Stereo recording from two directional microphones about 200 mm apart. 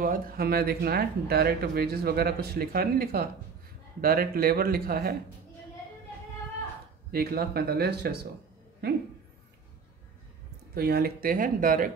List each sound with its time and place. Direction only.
0.0 s speech: 45° right (ahead or behind)
7.1 s speech: 50° right (ahead or behind)
10.7 s speech: 50° right (ahead or behind)